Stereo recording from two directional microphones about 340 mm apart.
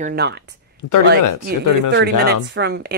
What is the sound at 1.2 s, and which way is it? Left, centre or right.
Speech, left.